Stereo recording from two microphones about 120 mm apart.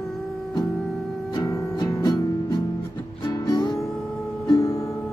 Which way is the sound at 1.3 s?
35° left (ahead or behind).